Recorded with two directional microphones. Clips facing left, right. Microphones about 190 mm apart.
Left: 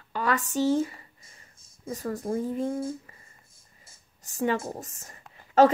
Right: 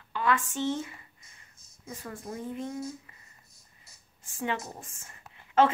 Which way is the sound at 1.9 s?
40° left (ahead or behind).